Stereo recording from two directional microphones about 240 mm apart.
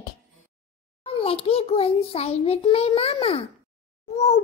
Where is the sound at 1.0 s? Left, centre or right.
Left.